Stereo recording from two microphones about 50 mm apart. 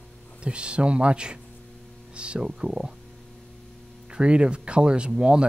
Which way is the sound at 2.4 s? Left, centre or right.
Centre.